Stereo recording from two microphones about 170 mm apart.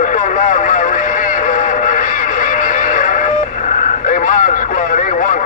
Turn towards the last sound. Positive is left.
turn(degrees=50)  # may be behind; listen again after turning